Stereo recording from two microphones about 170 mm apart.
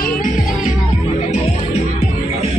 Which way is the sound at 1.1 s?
40° left (ahead or behind).